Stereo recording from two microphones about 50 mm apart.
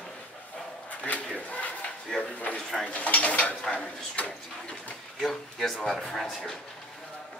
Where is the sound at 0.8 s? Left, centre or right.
Left.